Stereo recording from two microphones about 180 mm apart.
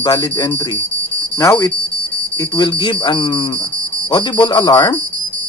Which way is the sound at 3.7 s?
10° left (ahead or behind).